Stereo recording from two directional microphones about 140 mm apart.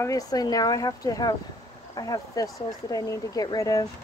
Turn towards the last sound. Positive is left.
turn(degrees=25)  # may be behind; listen again after turning